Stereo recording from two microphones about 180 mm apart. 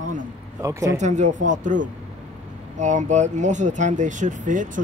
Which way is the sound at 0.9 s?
40° right (ahead or behind).